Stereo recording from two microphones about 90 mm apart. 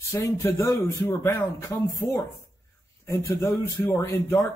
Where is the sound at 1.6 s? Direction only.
40° left (ahead or behind).